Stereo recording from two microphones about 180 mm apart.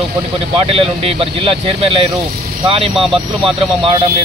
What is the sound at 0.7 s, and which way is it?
Speech, 30° right (ahead or behind).